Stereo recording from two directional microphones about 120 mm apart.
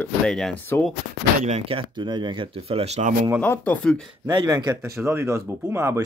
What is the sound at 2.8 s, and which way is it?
Speech, 65° right (ahead or behind).